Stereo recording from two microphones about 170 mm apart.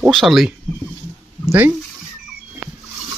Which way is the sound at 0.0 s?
Centre (ahead or behind).